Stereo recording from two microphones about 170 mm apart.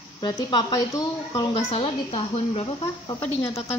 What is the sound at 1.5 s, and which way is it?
Speech, 35° left (ahead or behind).